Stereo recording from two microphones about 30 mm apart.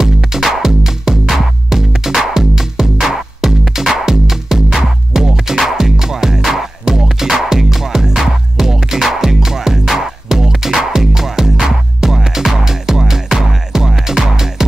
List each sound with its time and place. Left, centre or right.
0.3 s music: centre